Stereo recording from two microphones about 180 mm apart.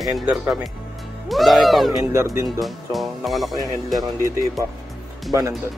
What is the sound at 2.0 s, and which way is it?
Speech, 15° right (ahead or behind).